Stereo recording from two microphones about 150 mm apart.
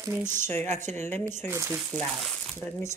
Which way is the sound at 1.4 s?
15° right (ahead or behind).